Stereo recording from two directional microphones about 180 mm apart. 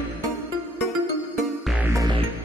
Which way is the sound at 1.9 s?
20° right (ahead or behind).